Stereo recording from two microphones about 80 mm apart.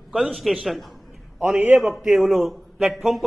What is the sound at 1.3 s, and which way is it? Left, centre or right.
Speech, right.